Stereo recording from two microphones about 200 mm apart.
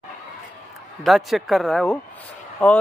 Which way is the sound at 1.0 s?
Centre (ahead or behind).